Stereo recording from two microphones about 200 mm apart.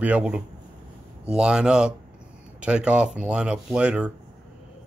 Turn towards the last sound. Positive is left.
turn(degrees=-5)  # may be behind; listen again after turning